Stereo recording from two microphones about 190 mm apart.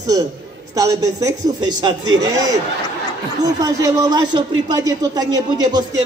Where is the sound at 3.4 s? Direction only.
20° right (ahead or behind).